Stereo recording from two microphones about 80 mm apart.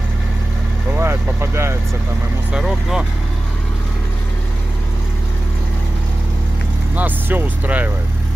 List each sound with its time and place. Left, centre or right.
0.9 s speech: right
2.5 s speech: centre
7.0 s speech: right